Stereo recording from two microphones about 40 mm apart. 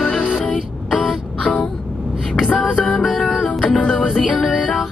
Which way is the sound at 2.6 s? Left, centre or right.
Left.